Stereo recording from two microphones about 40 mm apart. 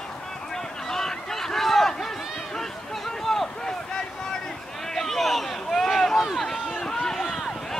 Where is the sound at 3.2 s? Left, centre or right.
Centre.